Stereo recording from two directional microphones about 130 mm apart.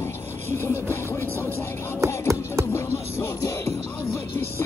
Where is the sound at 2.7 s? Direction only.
20° left (ahead or behind).